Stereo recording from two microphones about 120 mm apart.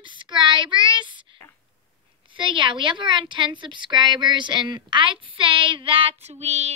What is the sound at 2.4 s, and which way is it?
A woman's voice, 45° right (ahead or behind).